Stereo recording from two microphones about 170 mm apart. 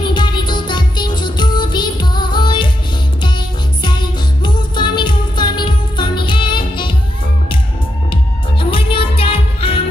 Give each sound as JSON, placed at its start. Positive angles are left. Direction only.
{"t": 0.0, "sound": "music", "side_deg": 25}
{"t": 8.1, "sound": "music", "side_deg": 30}